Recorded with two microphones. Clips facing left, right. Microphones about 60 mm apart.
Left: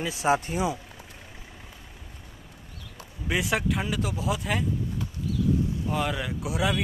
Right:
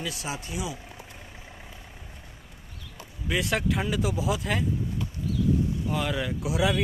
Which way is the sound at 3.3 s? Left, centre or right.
Centre.